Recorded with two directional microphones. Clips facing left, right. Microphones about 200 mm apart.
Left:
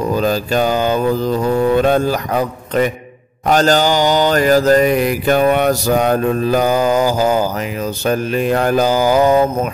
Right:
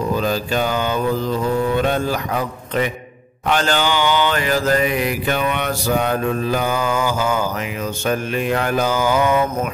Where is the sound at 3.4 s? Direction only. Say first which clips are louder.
Left 6 dB; 40° left (ahead or behind).